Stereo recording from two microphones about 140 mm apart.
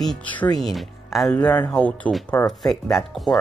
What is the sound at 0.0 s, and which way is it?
Speech, 5° left (ahead or behind).